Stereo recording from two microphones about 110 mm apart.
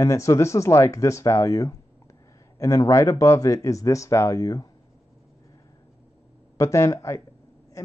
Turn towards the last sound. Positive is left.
turn(degrees=25)  # may be behind; listen again after turning